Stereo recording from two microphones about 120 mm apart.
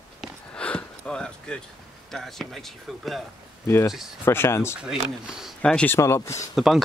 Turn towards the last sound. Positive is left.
turn(degrees=0)  # may be behind; listen again after turning